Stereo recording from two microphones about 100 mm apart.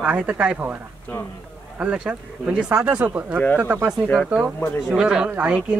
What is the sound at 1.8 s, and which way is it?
Speech, 10° right (ahead or behind).